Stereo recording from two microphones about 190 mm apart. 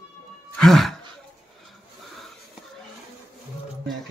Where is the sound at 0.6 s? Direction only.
Centre (ahead or behind).